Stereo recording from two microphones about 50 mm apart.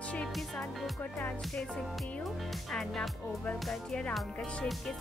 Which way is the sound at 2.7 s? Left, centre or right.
Centre.